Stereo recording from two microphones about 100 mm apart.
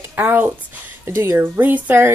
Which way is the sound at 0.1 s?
20° right (ahead or behind).